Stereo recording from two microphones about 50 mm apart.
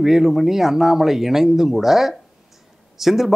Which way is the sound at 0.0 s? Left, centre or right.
Centre.